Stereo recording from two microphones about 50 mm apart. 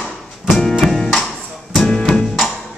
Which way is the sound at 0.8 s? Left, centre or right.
Centre.